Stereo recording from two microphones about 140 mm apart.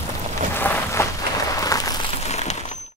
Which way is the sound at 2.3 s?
50° left (ahead or behind).